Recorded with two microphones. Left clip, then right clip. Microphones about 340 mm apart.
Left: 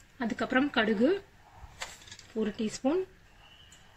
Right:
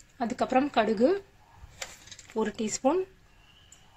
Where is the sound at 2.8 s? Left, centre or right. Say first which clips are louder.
Right 4 dB; right.